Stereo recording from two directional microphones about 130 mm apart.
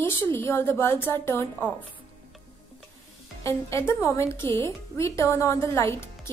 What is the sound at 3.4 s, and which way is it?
A woman's voice, 20° left (ahead or behind).